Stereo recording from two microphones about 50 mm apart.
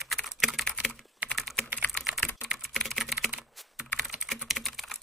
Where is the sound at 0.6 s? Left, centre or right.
Centre.